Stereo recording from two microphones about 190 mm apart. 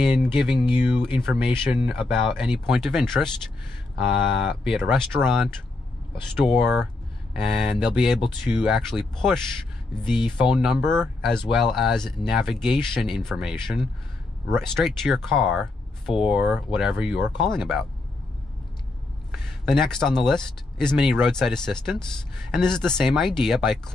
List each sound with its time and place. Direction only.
0.2 s speech: centre (ahead or behind)
6.4 s speech: centre (ahead or behind)
10.0 s speech: 25° left (ahead or behind)
10.4 s speech: centre (ahead or behind)
19.6 s speech: centre (ahead or behind)